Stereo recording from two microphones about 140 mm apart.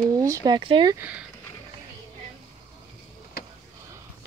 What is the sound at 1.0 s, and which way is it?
Speech, 10° right (ahead or behind).